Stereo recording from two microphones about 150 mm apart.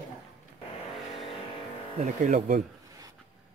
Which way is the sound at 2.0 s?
55° right (ahead or behind).